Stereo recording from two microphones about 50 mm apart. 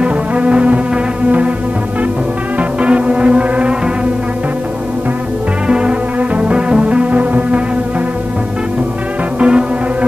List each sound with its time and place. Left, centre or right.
0.0 s music: right
2.8 s music: right
5.7 s music: right
9.4 s music: right